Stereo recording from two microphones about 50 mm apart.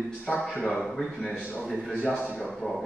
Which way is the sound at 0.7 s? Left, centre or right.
Centre.